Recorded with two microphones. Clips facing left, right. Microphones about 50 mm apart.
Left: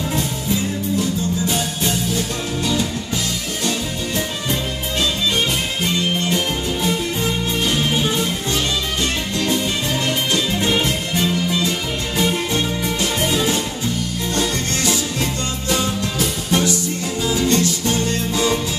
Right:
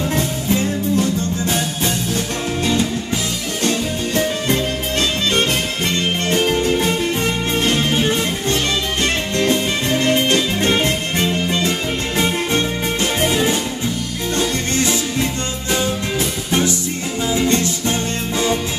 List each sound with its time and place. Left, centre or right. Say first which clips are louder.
0.1 s music: right 3 dB; right
2.6 s music: right 3 dB; right
3.6 s music: right 4 dB; right
6.2 s music: right 4 dB; right
10.0 s music: right 5 dB; right